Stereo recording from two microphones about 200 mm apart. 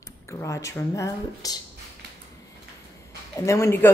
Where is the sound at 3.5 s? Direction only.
15° left (ahead or behind).